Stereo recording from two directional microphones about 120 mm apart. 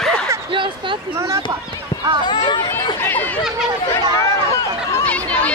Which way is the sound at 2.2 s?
40° left (ahead or behind).